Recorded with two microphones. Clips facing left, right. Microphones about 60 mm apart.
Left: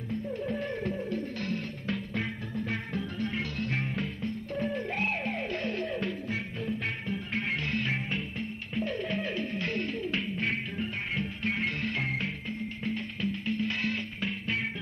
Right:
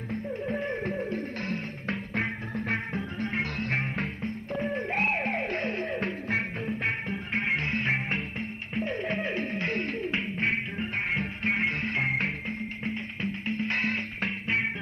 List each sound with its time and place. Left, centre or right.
0.1 s music: right